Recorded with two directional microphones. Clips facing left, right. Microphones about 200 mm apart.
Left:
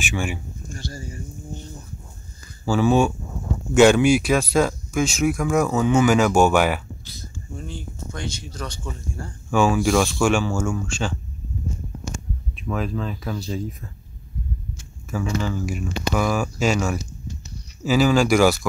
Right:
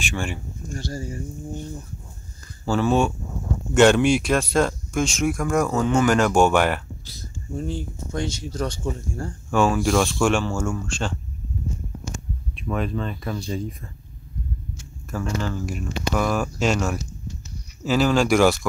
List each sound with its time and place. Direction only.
0.0 s speech: 5° left (ahead or behind)
0.7 s speech: 40° right (ahead or behind)
2.6 s speech: 5° left (ahead or behind)
7.1 s speech: 35° right (ahead or behind)
8.4 s speech: 45° right (ahead or behind)
9.5 s speech: centre (ahead or behind)
12.5 s speech: centre (ahead or behind)
15.0 s speech: 5° left (ahead or behind)